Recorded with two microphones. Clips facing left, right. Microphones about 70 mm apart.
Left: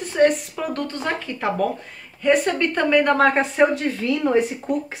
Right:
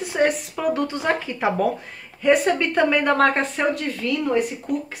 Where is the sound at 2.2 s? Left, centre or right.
Centre.